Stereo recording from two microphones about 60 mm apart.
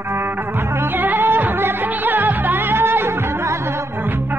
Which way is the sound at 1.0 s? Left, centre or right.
Right.